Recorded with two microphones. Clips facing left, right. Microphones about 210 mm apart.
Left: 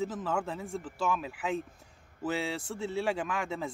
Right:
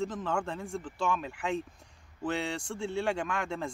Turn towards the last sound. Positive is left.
turn(degrees=0)  # may be behind; listen again after turning